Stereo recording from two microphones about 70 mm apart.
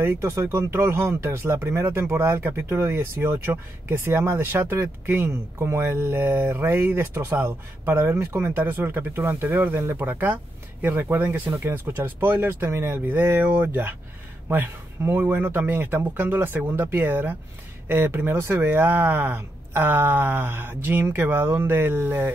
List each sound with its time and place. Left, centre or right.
0.0 s speech: right